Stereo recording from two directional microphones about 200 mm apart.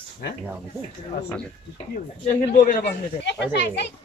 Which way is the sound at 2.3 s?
40° left (ahead or behind).